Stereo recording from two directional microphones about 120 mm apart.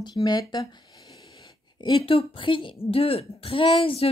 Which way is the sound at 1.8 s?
45° left (ahead or behind).